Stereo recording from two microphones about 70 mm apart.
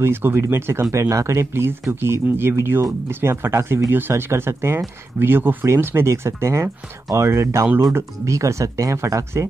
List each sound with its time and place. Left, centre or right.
0.0 s speech: right